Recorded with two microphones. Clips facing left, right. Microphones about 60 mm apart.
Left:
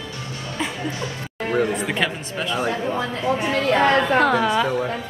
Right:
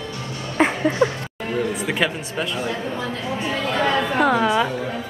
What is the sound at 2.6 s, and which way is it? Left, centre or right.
Speech, left.